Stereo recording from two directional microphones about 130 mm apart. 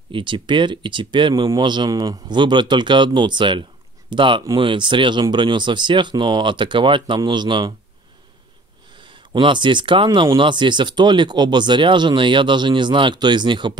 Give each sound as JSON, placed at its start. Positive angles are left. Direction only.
{"t": 0.1, "sound": "speech", "side_deg": -40}
{"t": 9.0, "sound": "speech", "side_deg": -40}